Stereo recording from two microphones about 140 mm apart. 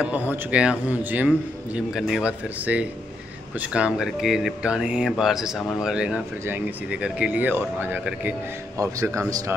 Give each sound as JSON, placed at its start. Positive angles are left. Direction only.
{"t": 0.3, "sound": "speech", "side_deg": -10}
{"t": 8.7, "sound": "speech", "side_deg": -20}